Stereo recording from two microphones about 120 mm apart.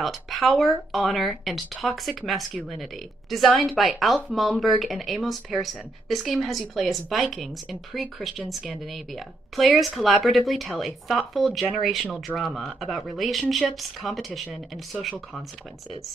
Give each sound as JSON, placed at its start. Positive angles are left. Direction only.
{"t": 0.0, "sound": "speech", "side_deg": 0}